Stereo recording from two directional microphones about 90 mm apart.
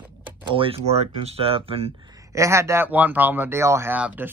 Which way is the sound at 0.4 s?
70° right (ahead or behind).